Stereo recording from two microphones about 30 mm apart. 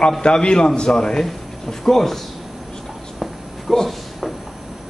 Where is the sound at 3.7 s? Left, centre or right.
Centre.